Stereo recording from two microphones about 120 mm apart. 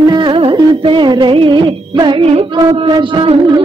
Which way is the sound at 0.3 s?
50° right (ahead or behind).